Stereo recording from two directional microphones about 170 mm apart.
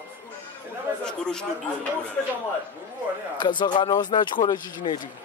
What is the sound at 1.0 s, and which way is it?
Speech, 5° left (ahead or behind).